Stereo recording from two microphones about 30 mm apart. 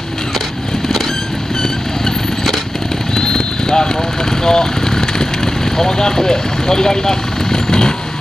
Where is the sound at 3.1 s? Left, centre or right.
Left.